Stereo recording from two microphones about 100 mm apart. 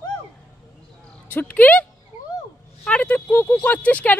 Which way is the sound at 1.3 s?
20° left (ahead or behind).